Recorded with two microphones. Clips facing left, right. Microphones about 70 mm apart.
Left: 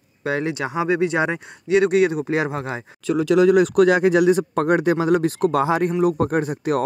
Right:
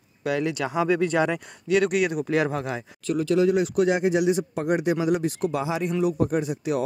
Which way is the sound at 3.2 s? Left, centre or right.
Left.